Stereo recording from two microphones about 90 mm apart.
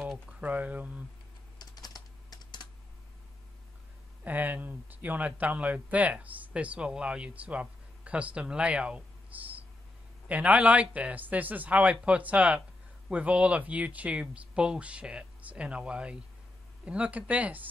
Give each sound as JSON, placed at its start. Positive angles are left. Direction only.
{"t": 0.3, "sound": "speech", "side_deg": -15}
{"t": 1.6, "sound": "typing", "side_deg": 45}
{"t": 4.2, "sound": "speech", "side_deg": -20}